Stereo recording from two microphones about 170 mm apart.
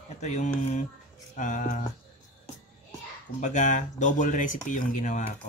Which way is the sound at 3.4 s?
45° left (ahead or behind).